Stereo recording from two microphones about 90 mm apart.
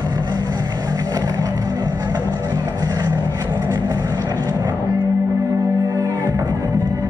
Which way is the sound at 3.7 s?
50° right (ahead or behind).